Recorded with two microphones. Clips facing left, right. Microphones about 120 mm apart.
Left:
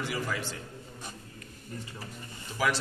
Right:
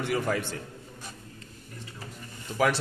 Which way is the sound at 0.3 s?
55° right (ahead or behind).